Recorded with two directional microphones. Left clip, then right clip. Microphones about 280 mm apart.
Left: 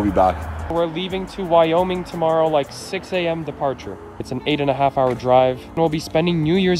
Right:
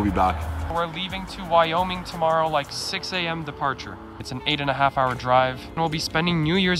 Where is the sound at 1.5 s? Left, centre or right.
Right.